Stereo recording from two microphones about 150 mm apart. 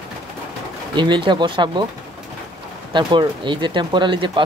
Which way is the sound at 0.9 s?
30° right (ahead or behind).